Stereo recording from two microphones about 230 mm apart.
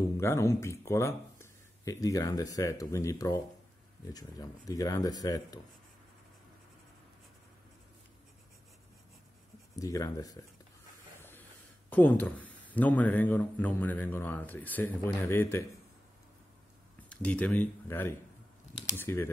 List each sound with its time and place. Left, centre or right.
0.2 s speech: centre
9.8 s speech: centre
11.1 s a sound: centre
11.9 s speech: centre
17.1 s speech: centre